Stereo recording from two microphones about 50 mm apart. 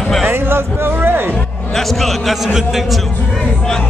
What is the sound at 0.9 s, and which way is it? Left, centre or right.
Music, right.